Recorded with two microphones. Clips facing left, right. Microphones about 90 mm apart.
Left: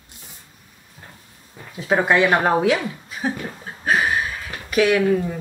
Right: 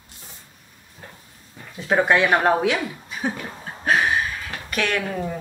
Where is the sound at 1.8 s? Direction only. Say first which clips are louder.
Left 1 dB; centre (ahead or behind).